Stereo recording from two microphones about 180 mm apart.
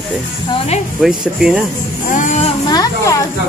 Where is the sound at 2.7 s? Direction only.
20° left (ahead or behind).